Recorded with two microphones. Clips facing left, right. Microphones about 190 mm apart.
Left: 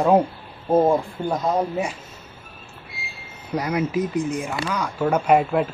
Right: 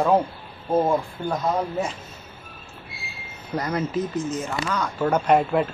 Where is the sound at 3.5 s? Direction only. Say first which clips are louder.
Left 2 dB; 10° left (ahead or behind).